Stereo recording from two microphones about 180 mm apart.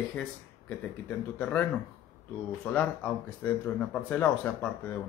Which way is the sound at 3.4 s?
10° left (ahead or behind).